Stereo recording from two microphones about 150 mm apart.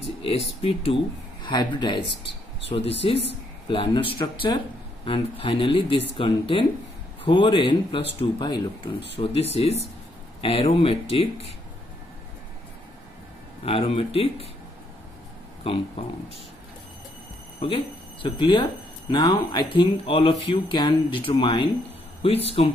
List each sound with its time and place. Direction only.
0.6 s speech: 40° left (ahead or behind)
13.7 s speech: 40° left (ahead or behind)
15.7 s speech: 35° left (ahead or behind)
18.2 s speech: 30° left (ahead or behind)